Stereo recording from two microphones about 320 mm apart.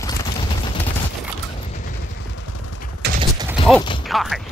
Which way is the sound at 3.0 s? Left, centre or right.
Right.